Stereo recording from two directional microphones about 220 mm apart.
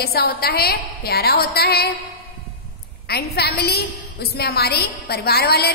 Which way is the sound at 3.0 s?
45° left (ahead or behind).